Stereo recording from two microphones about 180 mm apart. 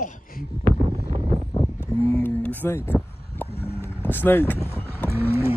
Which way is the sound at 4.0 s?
10° left (ahead or behind).